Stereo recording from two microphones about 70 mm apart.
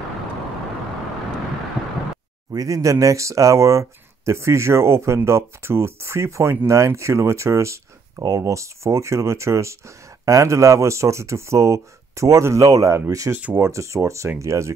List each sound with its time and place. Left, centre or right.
2.5 s speech: right
13.3 s speech: right